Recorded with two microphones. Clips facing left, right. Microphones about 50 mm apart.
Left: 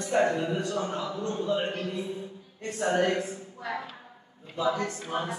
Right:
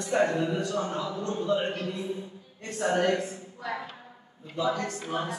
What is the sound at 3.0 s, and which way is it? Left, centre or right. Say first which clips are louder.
Speech: right 1 dB; centre.